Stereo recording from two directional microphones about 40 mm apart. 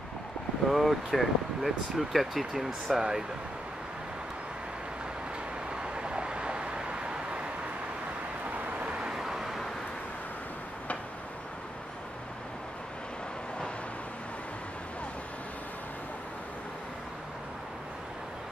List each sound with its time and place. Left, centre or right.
0.7 s speech: centre
5.8 s vehicle: right
8.8 s vehicle: centre
9.1 s vehicle: centre